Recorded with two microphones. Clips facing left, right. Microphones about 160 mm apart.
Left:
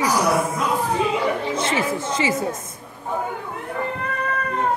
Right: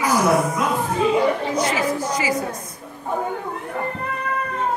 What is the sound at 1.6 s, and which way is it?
Speech, 25° left (ahead or behind).